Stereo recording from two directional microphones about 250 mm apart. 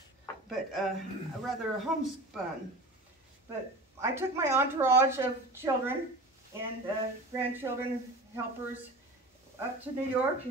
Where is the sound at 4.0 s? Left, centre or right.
Centre.